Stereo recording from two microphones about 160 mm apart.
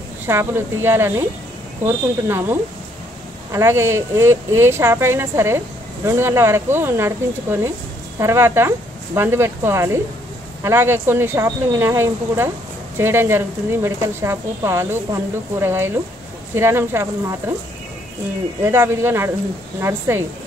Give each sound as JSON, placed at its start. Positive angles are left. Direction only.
{"t": 0.3, "sound": "a woman's voice", "side_deg": -15}
{"t": 18.6, "sound": "a woman's voice", "side_deg": -15}